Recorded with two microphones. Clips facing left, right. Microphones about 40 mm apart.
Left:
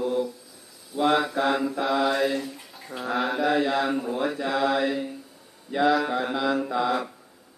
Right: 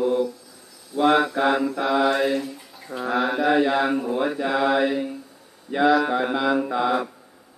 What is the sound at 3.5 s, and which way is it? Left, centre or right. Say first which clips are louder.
Mantra: right 5 dB; centre.